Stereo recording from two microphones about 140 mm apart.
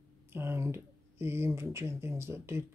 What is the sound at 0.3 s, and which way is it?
Speech, 15° right (ahead or behind).